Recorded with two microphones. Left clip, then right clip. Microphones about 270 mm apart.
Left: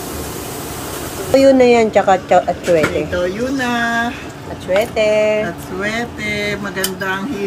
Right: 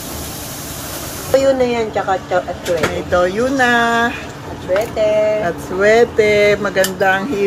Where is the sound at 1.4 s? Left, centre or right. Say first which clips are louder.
Left 4 dB; left.